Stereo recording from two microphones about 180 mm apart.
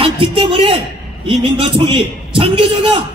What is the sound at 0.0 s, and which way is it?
A man's voice, 30° right (ahead or behind).